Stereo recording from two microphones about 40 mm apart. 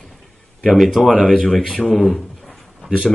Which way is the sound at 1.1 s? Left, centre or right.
Left.